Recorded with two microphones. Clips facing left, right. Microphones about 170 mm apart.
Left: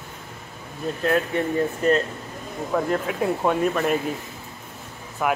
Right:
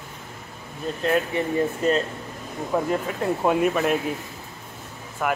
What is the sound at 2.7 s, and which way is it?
Speech, 15° right (ahead or behind).